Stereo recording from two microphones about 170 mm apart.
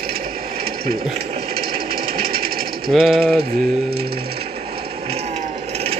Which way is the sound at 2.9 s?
Centre (ahead or behind).